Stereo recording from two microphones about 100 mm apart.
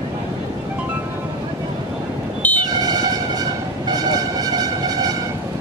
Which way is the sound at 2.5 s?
40° right (ahead or behind).